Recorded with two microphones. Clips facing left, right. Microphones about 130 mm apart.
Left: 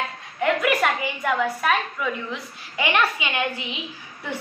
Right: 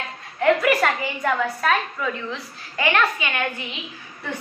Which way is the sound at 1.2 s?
5° left (ahead or behind).